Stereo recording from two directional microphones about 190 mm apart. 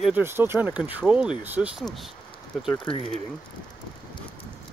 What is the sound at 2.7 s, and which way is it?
Speech, 25° left (ahead or behind).